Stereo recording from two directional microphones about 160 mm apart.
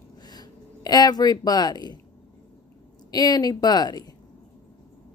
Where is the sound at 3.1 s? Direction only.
25° left (ahead or behind).